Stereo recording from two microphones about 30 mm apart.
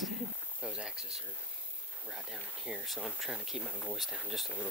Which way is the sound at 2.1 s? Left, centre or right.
Centre.